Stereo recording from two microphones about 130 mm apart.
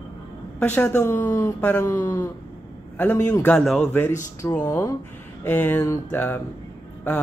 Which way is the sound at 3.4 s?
5° left (ahead or behind).